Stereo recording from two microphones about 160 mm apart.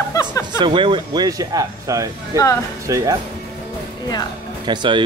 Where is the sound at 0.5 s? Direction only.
30° right (ahead or behind).